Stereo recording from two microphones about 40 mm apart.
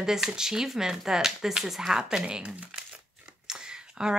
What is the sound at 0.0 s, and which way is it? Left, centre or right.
Speech, centre.